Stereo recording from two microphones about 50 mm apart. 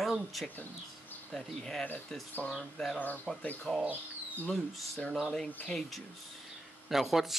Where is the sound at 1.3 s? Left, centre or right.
Centre.